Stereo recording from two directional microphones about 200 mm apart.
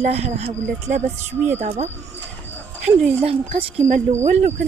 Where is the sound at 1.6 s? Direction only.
35° right (ahead or behind).